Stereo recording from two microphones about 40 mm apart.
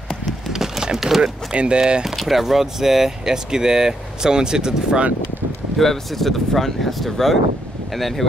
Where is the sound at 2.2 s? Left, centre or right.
Centre.